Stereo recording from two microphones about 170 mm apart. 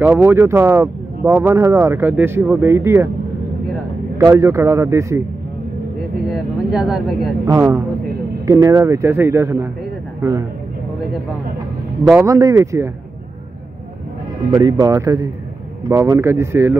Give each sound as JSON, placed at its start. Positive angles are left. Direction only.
{"t": 0.0, "sound": "speech", "side_deg": -10}
{"t": 4.2, "sound": "speech", "side_deg": -20}
{"t": 6.2, "sound": "speech", "side_deg": -5}
{"t": 7.4, "sound": "speech", "side_deg": -15}
{"t": 12.1, "sound": "speech", "side_deg": -15}
{"t": 14.5, "sound": "speech", "side_deg": -20}